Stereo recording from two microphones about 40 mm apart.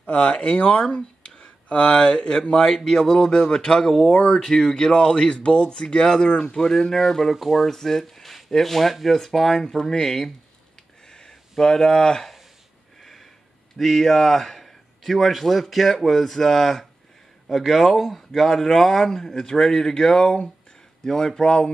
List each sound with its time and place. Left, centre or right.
0.0 s speech: left
2.5 s speech: centre
7.3 s speech: centre
7.6 s speech: centre
9.8 s speech: centre
11.1 s a sound: centre
11.6 s speech: centre
13.7 s speech: centre